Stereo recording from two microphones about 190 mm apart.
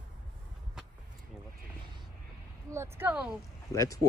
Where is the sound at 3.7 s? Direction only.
15° left (ahead or behind).